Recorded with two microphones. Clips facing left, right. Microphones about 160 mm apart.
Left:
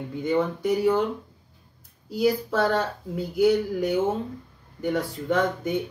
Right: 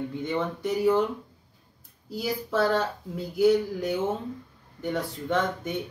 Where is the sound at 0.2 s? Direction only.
Centre (ahead or behind).